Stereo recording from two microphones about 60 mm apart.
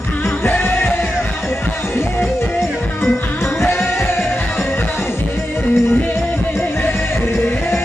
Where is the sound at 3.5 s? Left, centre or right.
Left.